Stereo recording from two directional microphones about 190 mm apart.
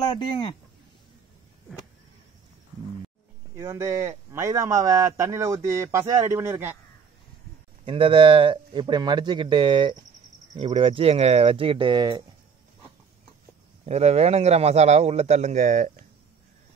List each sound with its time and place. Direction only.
0.1 s speech: 30° left (ahead or behind)
3.5 s speech: 15° right (ahead or behind)
7.8 s speech: 25° right (ahead or behind)
13.8 s a man's voice: 35° right (ahead or behind)